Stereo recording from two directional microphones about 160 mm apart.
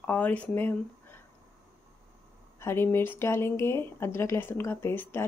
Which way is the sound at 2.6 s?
15° left (ahead or behind).